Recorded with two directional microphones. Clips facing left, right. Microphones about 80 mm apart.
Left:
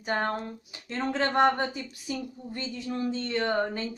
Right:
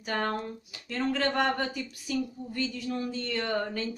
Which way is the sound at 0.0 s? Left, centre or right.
Left.